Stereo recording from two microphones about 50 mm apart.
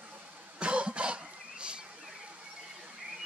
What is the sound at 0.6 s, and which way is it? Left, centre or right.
Cough, right.